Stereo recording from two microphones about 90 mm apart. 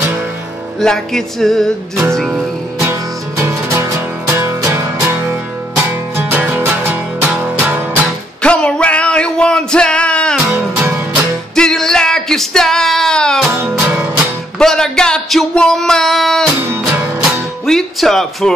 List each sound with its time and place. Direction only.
0.7 s music: 5° left (ahead or behind)
2.8 s music: 30° right (ahead or behind)
5.8 s music: 15° right (ahead or behind)
8.4 s music: 10° left (ahead or behind)
11.5 s a sound: 5° left (ahead or behind)
13.5 s music: 30° right (ahead or behind)
14.6 s a sound: 5° left (ahead or behind)
16.5 s music: 20° right (ahead or behind)
17.6 s speech: 5° left (ahead or behind)